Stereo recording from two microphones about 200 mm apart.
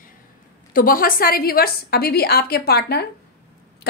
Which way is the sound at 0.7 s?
45° left (ahead or behind).